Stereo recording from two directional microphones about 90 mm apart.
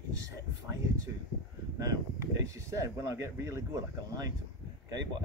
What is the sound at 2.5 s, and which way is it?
Speech, 35° right (ahead or behind).